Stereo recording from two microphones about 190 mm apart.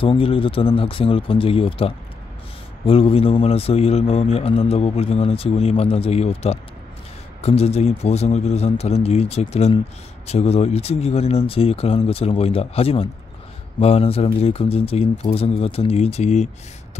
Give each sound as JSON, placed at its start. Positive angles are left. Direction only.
{"t": 0.0, "sound": "a man's voice", "side_deg": 30}